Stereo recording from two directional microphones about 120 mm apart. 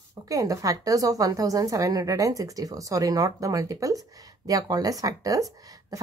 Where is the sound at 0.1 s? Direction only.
30° right (ahead or behind).